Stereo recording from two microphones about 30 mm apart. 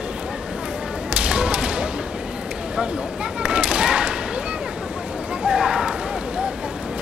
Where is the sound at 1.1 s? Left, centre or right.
Right.